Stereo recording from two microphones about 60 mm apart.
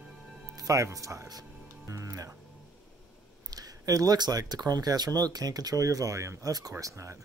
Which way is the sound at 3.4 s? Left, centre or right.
Right.